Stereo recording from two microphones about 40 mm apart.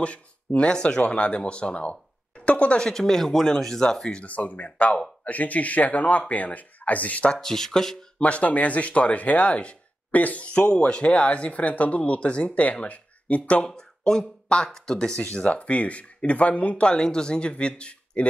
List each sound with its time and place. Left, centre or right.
0.0 s speech: left
2.8 s speech: centre
4.2 s speech: left
7.3 s speech: centre
8.2 s speech: left
10.1 s speech: left
10.4 s speech: left
13.7 s speech: centre
15.3 s speech: left